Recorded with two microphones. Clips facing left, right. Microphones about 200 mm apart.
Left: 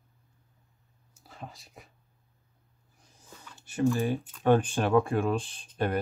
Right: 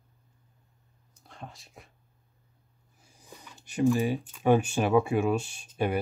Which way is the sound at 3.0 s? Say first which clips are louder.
Right 2 dB; 10° right (ahead or behind).